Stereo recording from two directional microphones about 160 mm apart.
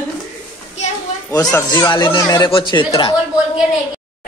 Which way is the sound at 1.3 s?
20° left (ahead or behind).